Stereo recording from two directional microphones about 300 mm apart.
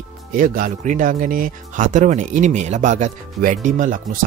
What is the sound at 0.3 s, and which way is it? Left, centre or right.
Speech, right.